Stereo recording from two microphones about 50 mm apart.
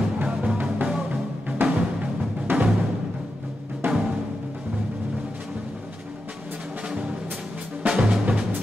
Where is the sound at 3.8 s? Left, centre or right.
Right.